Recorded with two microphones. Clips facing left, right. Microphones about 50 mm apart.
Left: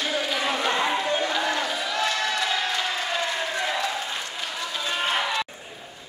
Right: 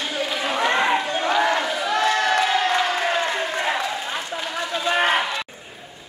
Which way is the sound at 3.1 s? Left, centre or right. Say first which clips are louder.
Right 4 dB; right.